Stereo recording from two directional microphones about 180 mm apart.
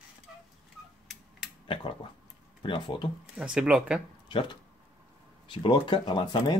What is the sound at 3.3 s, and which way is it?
Speech, 5° right (ahead or behind).